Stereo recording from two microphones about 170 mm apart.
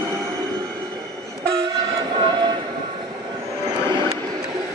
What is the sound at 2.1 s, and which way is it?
Speech, 25° right (ahead or behind).